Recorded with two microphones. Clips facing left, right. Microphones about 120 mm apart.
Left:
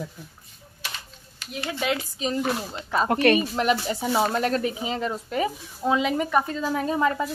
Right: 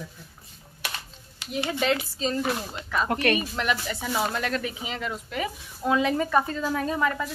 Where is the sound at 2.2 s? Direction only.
15° left (ahead or behind).